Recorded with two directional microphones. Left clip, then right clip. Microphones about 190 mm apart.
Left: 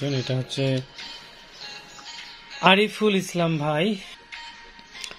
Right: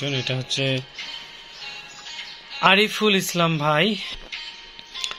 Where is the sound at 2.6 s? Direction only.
10° left (ahead or behind).